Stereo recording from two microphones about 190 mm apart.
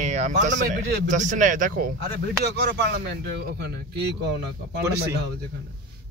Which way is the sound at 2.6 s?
60° right (ahead or behind).